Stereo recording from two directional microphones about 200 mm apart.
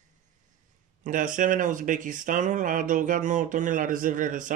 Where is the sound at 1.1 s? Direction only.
40° right (ahead or behind).